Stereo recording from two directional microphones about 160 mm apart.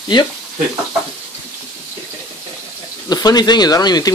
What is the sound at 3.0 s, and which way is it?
Speech, 25° left (ahead or behind).